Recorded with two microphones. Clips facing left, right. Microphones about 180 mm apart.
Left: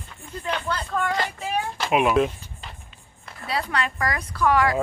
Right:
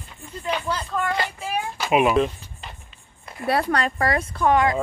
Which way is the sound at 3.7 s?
35° right (ahead or behind).